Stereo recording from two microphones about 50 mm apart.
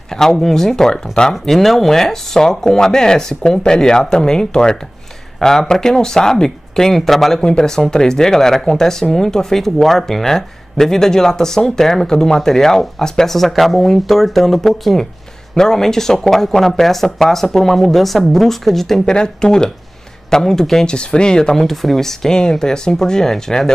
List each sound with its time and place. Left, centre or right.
0.1 s speech: centre
19.1 s speech: centre